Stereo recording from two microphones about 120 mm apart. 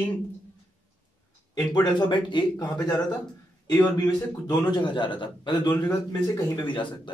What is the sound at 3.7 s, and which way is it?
Speech, 35° left (ahead or behind).